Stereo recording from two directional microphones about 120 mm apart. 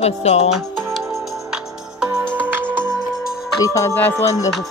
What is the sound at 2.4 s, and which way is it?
Music, 15° right (ahead or behind).